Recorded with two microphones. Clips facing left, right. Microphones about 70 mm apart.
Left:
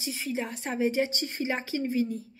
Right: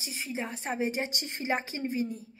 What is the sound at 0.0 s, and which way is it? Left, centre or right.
A woman's voice, right.